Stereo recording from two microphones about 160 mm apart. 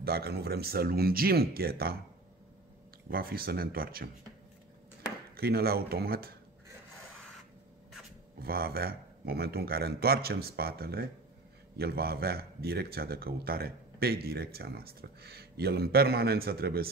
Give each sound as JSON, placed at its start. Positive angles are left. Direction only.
{"t": 0.0, "sound": "a man's voice", "side_deg": -75}
{"t": 3.1, "sound": "a man's voice", "side_deg": -70}
{"t": 5.3, "sound": "a man's voice", "side_deg": -75}
{"t": 8.4, "sound": "a man's voice", "side_deg": -70}